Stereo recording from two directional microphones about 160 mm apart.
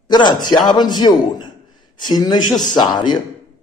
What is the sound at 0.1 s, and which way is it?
A man's voice, 25° left (ahead or behind).